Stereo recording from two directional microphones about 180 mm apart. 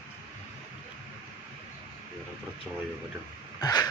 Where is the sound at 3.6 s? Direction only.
20° left (ahead or behind).